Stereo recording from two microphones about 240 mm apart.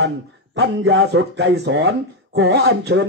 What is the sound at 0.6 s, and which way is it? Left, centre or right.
Speech, right.